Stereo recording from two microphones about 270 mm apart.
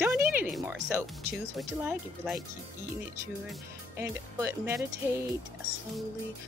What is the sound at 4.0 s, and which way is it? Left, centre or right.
Speech, centre.